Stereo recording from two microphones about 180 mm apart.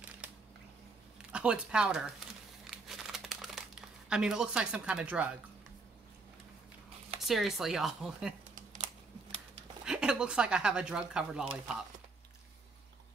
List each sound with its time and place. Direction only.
1.3 s crumpling: 5° right (ahead or behind)
4.1 s speech: 5° right (ahead or behind)
7.2 s speech: centre (ahead or behind)
9.8 s speech: 5° right (ahead or behind)